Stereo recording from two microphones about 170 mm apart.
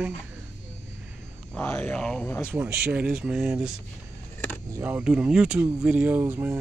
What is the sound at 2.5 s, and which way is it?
Speech, 10° right (ahead or behind).